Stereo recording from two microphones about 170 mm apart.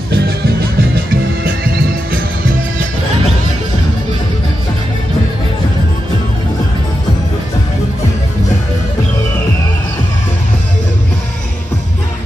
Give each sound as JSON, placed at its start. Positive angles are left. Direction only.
{"t": 0.1, "sound": "music", "side_deg": -70}